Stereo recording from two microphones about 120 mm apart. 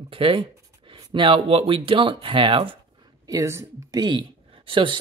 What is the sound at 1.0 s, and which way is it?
Speech, 45° right (ahead or behind).